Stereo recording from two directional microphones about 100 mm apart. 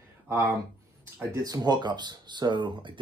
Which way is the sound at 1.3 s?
40° right (ahead or behind).